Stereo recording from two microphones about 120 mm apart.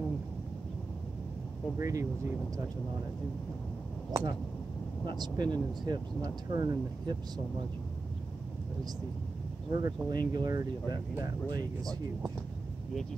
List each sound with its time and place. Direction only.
1.8 s speech: 25° right (ahead or behind)
4.1 s speech: 35° right (ahead or behind)
9.7 s speech: 35° right (ahead or behind)